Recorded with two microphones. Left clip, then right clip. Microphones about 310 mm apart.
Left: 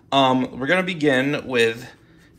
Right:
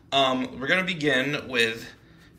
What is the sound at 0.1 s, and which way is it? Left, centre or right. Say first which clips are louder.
Speech: left 5 dB; centre.